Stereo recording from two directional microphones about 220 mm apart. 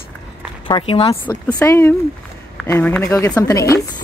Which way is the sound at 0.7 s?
25° left (ahead or behind).